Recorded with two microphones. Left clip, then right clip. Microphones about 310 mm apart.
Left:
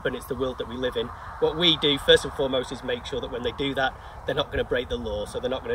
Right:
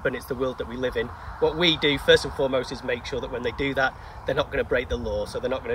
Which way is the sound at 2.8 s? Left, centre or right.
Centre.